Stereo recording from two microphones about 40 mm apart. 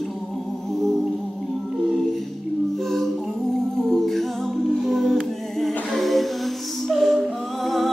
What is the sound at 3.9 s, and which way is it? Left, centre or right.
A capella, centre.